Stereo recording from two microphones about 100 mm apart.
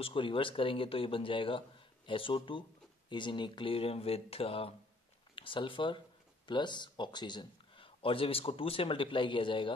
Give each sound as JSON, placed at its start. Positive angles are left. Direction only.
{"t": 0.0, "sound": "a man's voice", "side_deg": 60}
{"t": 5.3, "sound": "a man's voice", "side_deg": 60}